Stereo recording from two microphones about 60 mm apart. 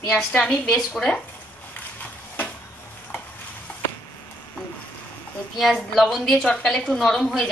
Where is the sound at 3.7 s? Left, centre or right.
Left.